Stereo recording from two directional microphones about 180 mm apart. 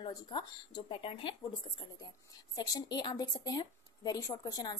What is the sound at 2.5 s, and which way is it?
A woman's voice, 20° left (ahead or behind).